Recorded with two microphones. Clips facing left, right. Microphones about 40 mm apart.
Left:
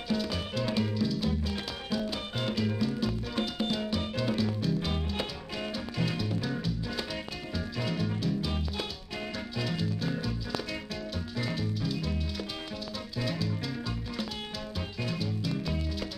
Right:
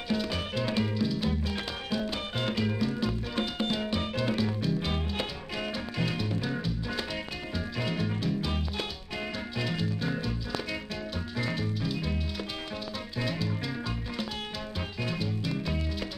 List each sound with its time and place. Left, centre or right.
0.1 s music: centre
13.2 s music: centre
15.0 s music: centre